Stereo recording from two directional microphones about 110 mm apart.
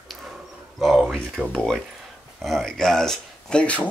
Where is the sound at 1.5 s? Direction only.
10° left (ahead or behind).